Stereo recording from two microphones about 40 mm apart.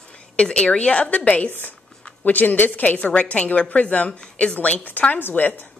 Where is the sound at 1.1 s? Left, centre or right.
Left.